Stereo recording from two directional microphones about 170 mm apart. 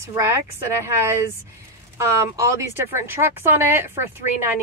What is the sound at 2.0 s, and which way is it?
Speech, 15° right (ahead or behind).